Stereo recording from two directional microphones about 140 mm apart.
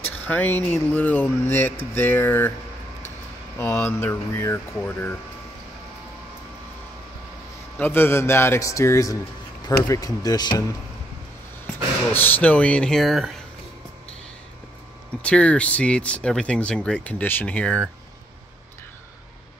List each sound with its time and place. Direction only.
0.2 s speech: 10° left (ahead or behind)
3.5 s speech: 15° left (ahead or behind)
7.8 s a man's voice: 15° left (ahead or behind)
11.6 s speech: 15° left (ahead or behind)
15.2 s speech: 10° left (ahead or behind)